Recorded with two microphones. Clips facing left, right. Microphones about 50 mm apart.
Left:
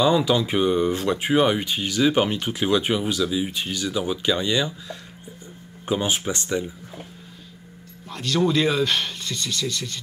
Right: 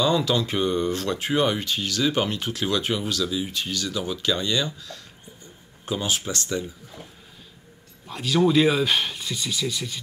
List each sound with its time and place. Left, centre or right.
0.0 s speech: centre
8.1 s speech: centre